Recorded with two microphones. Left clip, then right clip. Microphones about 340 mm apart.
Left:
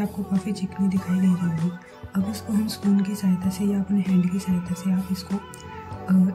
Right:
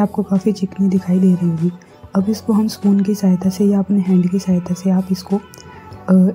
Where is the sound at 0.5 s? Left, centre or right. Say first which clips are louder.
Right 10 dB; centre.